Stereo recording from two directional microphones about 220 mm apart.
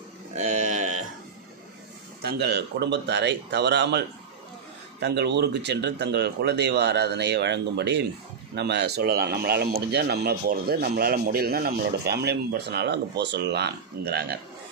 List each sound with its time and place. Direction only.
0.3 s a sound: 35° right (ahead or behind)
2.2 s speech: 50° right (ahead or behind)
5.0 s speech: 50° right (ahead or behind)